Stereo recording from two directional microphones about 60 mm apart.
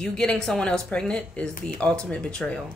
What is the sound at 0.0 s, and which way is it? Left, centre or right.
Speech, centre.